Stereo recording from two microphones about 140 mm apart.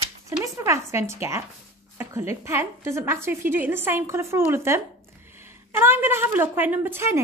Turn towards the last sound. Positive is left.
turn(degrees=-20)  # may be behind; listen again after turning